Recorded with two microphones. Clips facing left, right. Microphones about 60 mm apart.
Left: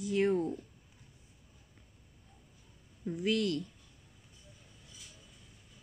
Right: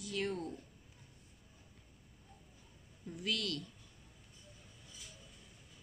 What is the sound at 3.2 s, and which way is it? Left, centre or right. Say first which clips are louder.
Speech: left 8 dB; left.